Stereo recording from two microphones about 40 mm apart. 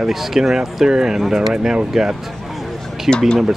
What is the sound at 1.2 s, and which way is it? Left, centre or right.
Speech, centre.